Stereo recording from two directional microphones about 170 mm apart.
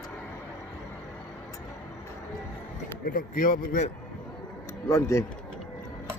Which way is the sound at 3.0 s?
55° left (ahead or behind).